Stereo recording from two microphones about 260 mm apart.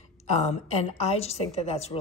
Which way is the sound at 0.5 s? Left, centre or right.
Left.